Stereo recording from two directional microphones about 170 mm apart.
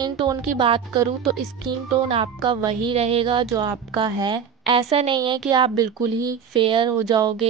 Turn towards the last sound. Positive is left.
turn(degrees=-20)  # may be behind; listen again after turning